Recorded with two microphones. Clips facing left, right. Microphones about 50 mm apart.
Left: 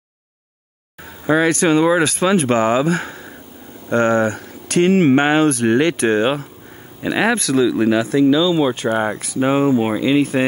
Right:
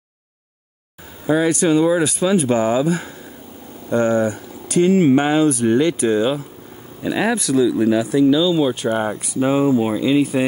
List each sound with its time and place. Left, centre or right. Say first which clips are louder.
1.2 s speech: left 1 dB; left
8.5 s speech: left 1 dB; left